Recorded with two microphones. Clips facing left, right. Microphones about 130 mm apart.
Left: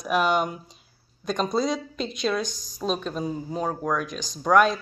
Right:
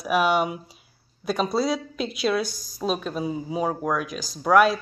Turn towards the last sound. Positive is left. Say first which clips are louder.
# right 1 dB
turn(degrees=-5)  # may be behind; listen again after turning